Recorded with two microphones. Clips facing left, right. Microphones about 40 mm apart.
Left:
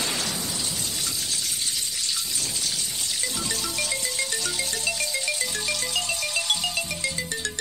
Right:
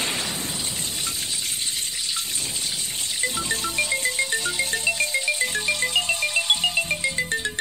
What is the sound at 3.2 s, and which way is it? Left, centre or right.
Music, right.